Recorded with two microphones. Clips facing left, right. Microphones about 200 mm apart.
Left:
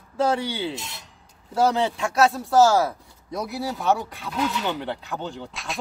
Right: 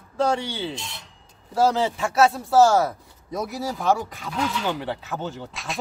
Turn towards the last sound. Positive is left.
turn(degrees=0)  # may be behind; listen again after turning